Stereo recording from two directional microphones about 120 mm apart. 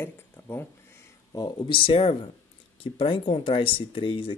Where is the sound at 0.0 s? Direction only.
20° left (ahead or behind).